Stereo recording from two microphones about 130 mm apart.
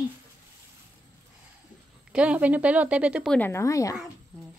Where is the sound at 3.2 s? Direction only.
15° left (ahead or behind).